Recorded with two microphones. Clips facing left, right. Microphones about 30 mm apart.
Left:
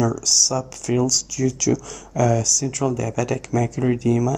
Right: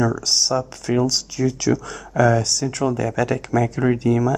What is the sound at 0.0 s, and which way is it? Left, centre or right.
Speech, right.